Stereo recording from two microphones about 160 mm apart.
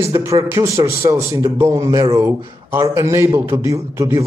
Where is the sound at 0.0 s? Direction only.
15° right (ahead or behind).